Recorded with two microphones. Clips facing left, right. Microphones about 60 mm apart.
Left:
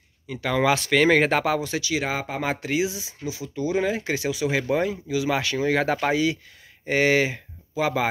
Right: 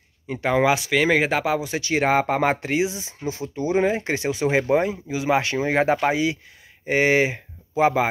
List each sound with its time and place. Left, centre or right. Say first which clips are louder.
0.3 s speech: right 2 dB; right
1.8 s speech: right 6 dB; right